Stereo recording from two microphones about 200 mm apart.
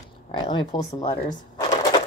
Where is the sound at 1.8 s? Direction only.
20° left (ahead or behind).